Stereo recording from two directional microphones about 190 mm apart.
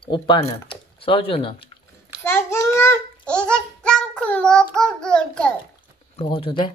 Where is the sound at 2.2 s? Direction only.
15° left (ahead or behind).